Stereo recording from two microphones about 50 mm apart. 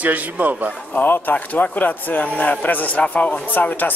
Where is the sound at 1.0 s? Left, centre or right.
Left.